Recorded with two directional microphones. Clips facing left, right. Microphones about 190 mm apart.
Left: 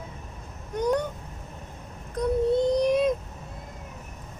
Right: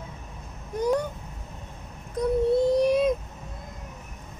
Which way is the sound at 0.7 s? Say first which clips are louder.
Even; centre (ahead or behind).